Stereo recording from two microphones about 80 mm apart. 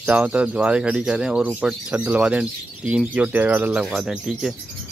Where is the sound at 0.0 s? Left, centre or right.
Centre.